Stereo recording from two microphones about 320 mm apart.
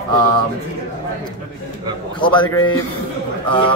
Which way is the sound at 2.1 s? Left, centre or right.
Centre.